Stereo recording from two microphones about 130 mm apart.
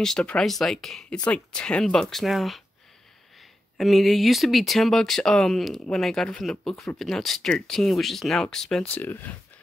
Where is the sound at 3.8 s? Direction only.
Centre (ahead or behind).